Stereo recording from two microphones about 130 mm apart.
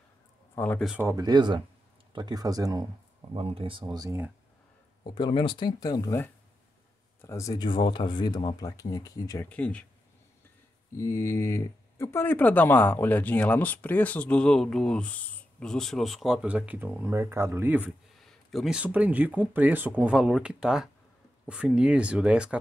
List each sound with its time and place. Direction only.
0.6 s speech: 20° left (ahead or behind)
1.1 s speech: 30° right (ahead or behind)
3.3 s speech: 50° right (ahead or behind)
3.8 s speech: 30° right (ahead or behind)
5.0 s speech: 35° left (ahead or behind)
9.4 s speech: 10° left (ahead or behind)
11.0 s speech: 20° left (ahead or behind); by 17.9 s 10° right (ahead or behind)
18.1 s speech: centre (ahead or behind)